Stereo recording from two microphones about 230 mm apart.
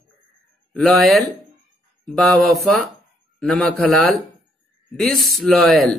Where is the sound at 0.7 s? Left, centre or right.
Centre.